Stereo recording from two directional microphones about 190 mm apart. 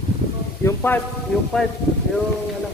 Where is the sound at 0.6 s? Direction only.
10° left (ahead or behind).